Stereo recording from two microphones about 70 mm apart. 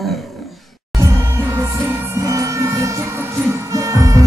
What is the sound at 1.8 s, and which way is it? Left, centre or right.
Music, right.